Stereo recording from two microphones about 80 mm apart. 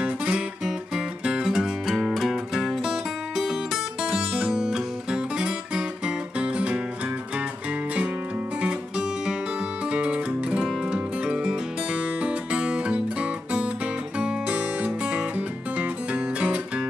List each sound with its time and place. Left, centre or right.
0.0 s music: centre
8.5 s music: centre